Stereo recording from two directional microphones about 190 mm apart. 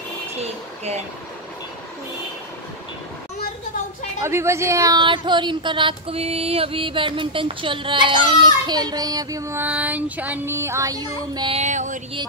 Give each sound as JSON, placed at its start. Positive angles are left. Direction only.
{"t": 0.4, "sound": "vehicle", "side_deg": -35}
{"t": 4.2, "sound": "a woman's voice", "side_deg": -15}
{"t": 11.5, "sound": "a sound", "side_deg": -40}